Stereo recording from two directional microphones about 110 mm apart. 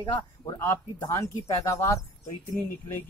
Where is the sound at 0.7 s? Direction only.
25° left (ahead or behind).